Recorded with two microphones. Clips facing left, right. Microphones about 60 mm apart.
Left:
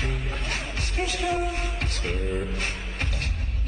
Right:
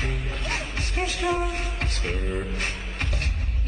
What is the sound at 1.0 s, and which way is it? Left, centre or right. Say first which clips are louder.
Speech: right 1 dB; right.